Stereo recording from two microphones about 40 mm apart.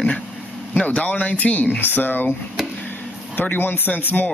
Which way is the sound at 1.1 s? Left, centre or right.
Left.